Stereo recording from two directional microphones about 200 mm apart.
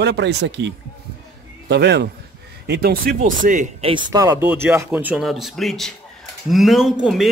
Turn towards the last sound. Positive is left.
turn(degrees=0)  # may be behind; listen again after turning